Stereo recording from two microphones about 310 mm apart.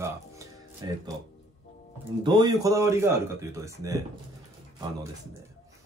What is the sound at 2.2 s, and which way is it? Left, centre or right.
Speech, centre.